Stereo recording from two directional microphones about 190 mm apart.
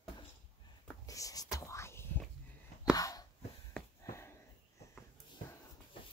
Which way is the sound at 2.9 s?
20° left (ahead or behind).